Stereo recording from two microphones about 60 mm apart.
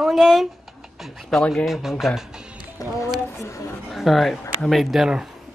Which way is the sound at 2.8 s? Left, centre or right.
Left.